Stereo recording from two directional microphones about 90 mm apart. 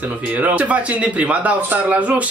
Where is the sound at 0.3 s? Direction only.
15° right (ahead or behind).